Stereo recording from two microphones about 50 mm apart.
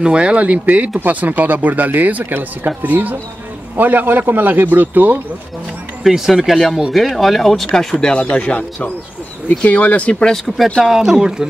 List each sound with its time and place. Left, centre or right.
0.0 s speech: centre; by 5.2 s right
6.0 s speech: centre
8.0 s speech: left
10.3 s speech: centre
10.8 s speech: centre